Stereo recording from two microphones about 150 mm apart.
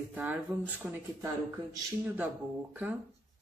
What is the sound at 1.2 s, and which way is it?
Speech, 25° right (ahead or behind).